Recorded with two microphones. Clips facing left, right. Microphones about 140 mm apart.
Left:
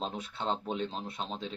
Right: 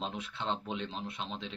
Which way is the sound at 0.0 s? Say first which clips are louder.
Left 2 dB; 40° left (ahead or behind).